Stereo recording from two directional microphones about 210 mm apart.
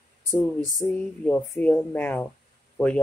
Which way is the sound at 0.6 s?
15° right (ahead or behind).